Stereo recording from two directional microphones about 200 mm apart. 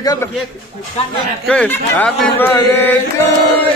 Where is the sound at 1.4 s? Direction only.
5° left (ahead or behind).